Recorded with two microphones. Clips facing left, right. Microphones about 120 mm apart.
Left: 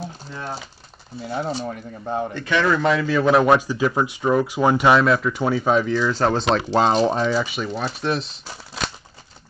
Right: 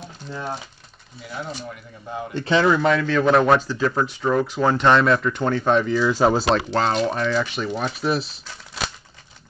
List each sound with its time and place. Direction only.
1.2 s speech: 35° left (ahead or behind)
2.3 s speech: 25° right (ahead or behind)
2.8 s speech: centre (ahead or behind)
6.9 s speech: 25° left (ahead or behind)
7.2 s speech: 5° left (ahead or behind)
8.8 s crumpling: centre (ahead or behind)